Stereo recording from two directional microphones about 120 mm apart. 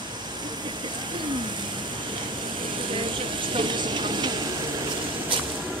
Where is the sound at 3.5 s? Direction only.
40° right (ahead or behind).